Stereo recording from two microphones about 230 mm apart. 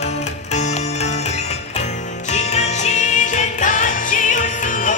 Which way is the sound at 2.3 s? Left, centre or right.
Left.